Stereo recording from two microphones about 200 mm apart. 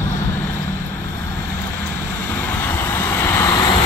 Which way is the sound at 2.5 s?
10° left (ahead or behind).